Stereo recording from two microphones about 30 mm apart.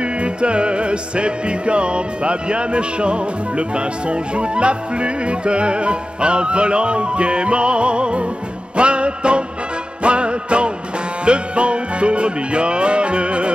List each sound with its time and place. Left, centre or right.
0.0 s music: right